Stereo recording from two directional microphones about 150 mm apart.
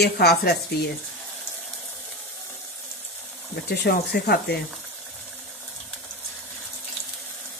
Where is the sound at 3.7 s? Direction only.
90° left.